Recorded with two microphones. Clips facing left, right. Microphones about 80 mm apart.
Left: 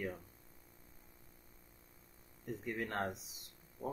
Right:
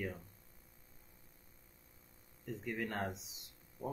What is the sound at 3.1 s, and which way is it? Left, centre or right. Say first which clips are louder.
Speech: even; left.